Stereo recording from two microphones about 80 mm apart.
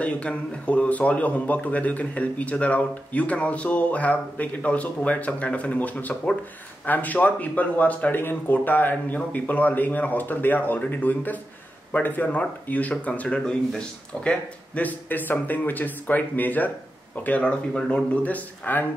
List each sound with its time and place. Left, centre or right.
0.0 s speech: centre